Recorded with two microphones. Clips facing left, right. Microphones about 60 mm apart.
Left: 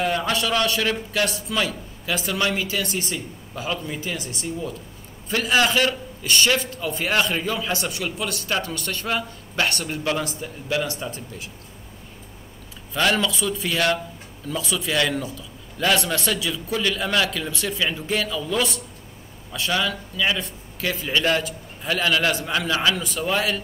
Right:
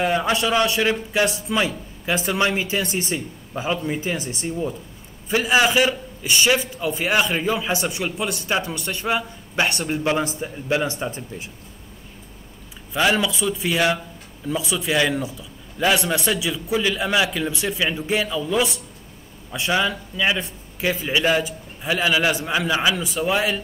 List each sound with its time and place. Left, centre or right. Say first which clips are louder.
0.0 s a man's voice: right 3 dB; centre
5.3 s a man's voice: right 2 dB; centre
12.9 s a man's voice: right 2 dB; centre